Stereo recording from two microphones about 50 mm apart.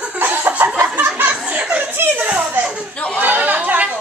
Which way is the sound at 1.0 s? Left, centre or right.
Right.